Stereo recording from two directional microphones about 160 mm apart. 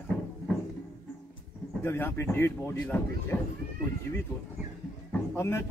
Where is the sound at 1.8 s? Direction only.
15° left (ahead or behind).